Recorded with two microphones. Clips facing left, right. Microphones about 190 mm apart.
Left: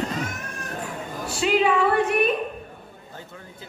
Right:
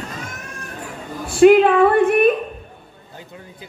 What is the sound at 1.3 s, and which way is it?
A woman's voice, 55° right (ahead or behind).